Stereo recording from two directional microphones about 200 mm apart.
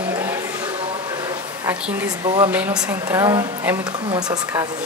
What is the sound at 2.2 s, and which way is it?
Speech, 20° right (ahead or behind).